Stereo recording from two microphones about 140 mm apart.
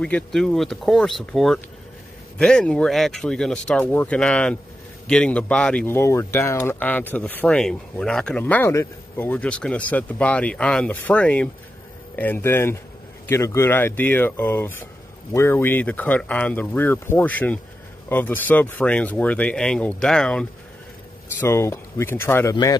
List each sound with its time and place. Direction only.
0.0 s speech: 5° left (ahead or behind)
21.4 s speech: 20° left (ahead or behind)